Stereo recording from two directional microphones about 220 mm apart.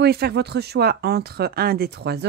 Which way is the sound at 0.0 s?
45° right (ahead or behind).